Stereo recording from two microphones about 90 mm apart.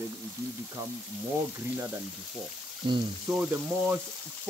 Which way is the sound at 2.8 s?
70° right (ahead or behind).